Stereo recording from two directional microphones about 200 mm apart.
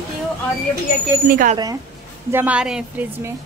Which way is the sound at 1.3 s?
45° right (ahead or behind).